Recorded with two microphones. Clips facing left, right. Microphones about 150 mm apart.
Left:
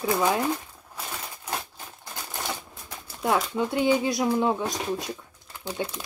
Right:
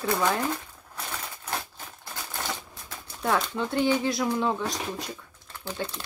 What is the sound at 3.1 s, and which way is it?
Speech, 10° left (ahead or behind).